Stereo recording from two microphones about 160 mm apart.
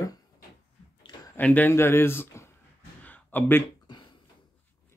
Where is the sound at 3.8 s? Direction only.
30° left (ahead or behind).